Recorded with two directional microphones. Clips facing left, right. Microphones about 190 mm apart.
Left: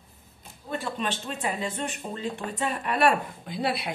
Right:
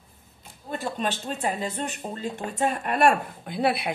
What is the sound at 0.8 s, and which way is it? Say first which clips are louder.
Speech: right 4 dB; 40° right (ahead or behind).